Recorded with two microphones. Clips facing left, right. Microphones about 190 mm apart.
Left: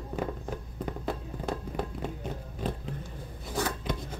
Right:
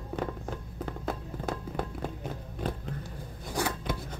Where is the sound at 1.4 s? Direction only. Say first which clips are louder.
Left 1 dB; centre (ahead or behind).